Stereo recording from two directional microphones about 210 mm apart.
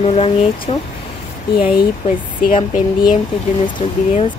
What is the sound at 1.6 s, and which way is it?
Speech, 40° left (ahead or behind).